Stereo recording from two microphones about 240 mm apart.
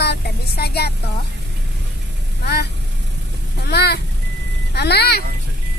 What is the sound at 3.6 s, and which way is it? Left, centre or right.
Fowl, left.